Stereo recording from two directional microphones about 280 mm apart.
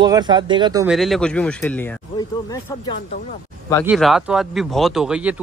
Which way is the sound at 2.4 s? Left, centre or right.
Centre.